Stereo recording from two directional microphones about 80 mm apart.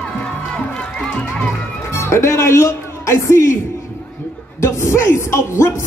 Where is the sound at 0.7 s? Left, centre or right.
Centre.